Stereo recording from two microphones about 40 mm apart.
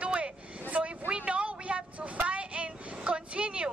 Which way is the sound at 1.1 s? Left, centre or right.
Right.